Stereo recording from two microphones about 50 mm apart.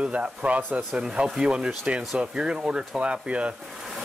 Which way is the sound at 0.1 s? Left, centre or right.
Right.